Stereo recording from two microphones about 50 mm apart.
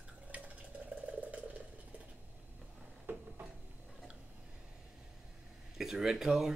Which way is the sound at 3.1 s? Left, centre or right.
Right.